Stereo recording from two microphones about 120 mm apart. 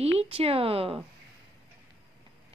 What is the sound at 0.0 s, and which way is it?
Speech, 60° right (ahead or behind).